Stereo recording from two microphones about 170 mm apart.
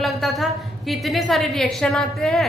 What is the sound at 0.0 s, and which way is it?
A woman's voice, centre (ahead or behind).